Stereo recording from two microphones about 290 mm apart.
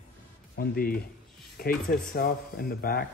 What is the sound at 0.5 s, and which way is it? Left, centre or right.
Speech, left.